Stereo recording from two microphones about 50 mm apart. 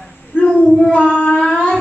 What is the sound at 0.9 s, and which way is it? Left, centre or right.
Child singing, left.